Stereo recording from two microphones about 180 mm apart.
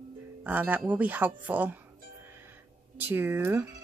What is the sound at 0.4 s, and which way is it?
Speech, 10° right (ahead or behind).